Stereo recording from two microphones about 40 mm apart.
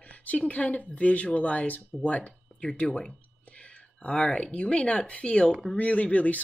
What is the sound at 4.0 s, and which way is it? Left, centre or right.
Speech, left.